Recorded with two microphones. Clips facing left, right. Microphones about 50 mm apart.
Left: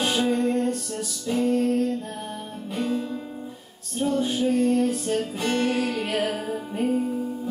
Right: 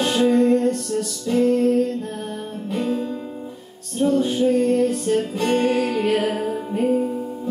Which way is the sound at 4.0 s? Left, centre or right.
Centre.